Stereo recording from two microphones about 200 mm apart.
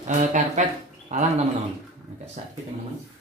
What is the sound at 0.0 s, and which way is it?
Speech, 35° right (ahead or behind).